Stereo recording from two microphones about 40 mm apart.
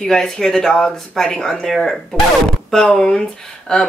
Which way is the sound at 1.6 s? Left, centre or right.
Centre.